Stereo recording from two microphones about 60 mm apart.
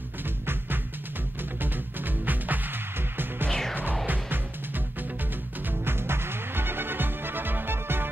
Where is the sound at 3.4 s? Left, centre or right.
Centre.